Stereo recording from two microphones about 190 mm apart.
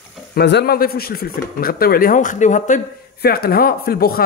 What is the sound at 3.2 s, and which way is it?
Speech, 55° left (ahead or behind).